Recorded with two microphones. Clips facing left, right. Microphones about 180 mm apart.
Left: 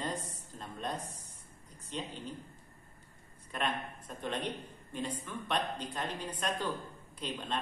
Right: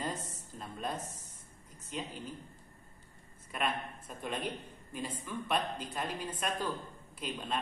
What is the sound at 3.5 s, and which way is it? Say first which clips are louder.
A man's voice: even; 5° right (ahead or behind).